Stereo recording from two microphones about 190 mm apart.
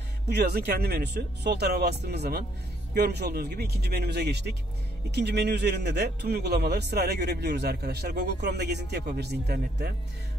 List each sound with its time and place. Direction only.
0.5 s a man's voice: 50° right (ahead or behind)